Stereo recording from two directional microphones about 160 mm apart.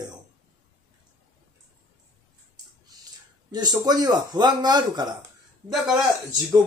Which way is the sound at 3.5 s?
25° right (ahead or behind).